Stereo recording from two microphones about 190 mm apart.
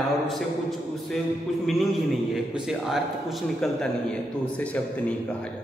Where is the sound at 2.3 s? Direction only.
Centre (ahead or behind).